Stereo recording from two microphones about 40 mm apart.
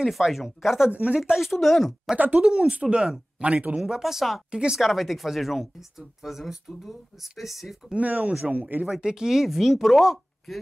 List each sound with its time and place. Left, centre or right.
0.1 s speech: centre
0.9 s speech: right
1.3 s speech: centre
1.6 s speech: centre
2.1 s speech: right
2.4 s speech: centre
3.8 s speech: centre
4.5 s speech: right
4.7 s speech: centre
8.0 s speech: right
8.8 s speech: centre